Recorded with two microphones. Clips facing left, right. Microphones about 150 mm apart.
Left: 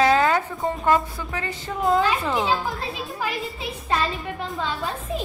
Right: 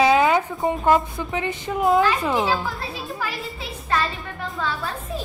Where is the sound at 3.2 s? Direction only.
20° left (ahead or behind).